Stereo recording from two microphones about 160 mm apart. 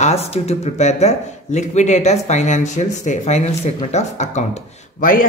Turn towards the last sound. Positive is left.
turn(degrees=55)  # may be behind; listen again after turning